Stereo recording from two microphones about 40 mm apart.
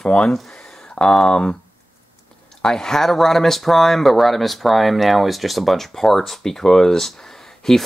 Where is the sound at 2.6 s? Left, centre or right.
Centre.